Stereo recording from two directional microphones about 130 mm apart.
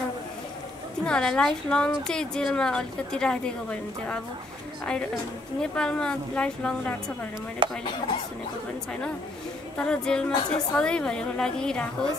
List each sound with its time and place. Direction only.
1.0 s a woman's voice: 5° left (ahead or behind)
5.6 s a woman's voice: 5° left (ahead or behind)
7.6 s speech: 40° right (ahead or behind)
9.8 s a woman's voice: 5° left (ahead or behind)